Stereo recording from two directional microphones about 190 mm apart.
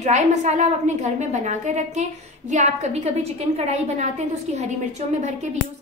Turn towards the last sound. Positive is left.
turn(degrees=-35)  # may be behind; listen again after turning